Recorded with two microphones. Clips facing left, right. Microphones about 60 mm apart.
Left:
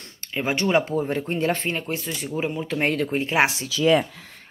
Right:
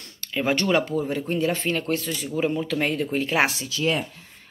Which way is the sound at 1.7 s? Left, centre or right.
Centre.